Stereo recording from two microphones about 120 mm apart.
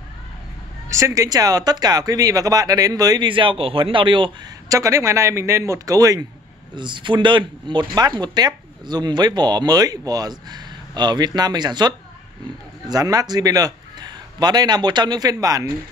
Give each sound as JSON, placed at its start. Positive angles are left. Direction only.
{"t": 0.8, "sound": "speech", "side_deg": -25}
{"t": 4.6, "sound": "a man's voice", "side_deg": -25}
{"t": 6.7, "sound": "a man's voice", "side_deg": -40}